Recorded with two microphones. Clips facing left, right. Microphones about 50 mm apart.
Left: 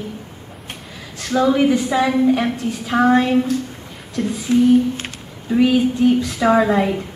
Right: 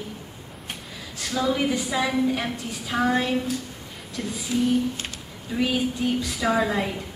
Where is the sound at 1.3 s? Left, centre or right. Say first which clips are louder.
Left 9 dB; left.